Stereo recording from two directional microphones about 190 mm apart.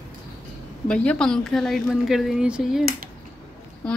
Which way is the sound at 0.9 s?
5° left (ahead or behind).